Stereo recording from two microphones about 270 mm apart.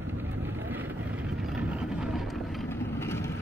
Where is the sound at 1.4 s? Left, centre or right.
Centre.